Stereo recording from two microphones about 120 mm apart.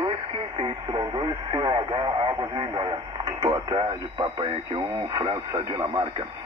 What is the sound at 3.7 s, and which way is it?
Speech, 40° right (ahead or behind).